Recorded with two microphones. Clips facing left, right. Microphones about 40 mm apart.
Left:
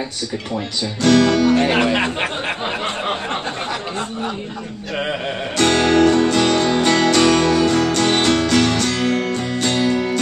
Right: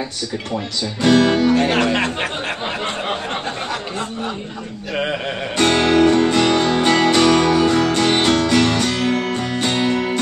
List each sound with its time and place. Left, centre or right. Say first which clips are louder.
1.0 s speech: even; centre
1.6 s speech: even; centre
5.6 s music: even; centre